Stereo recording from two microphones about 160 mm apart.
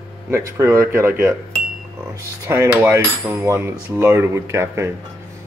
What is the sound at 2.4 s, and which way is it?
Speech, 15° right (ahead or behind).